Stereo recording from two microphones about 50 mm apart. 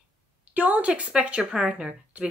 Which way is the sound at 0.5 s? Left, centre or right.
Right.